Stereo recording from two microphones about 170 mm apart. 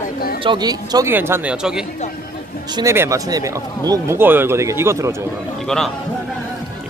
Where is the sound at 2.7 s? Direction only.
15° right (ahead or behind).